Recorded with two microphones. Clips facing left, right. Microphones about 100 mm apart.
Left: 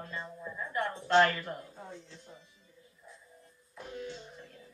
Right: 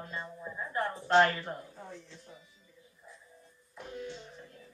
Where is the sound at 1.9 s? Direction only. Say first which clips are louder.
Even; 25° left (ahead or behind).